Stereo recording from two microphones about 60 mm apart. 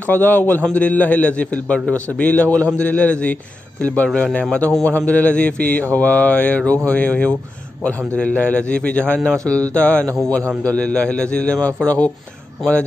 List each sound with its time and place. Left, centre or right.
0.0 s a man's voice: left
0.7 s mantra: left
8.2 s a man's voice: centre
9.8 s mantra: left